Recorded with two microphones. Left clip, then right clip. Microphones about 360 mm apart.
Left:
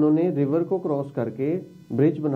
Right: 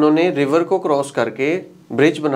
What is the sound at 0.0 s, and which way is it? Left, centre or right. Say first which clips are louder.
A woman's voice: right 6 dB; centre.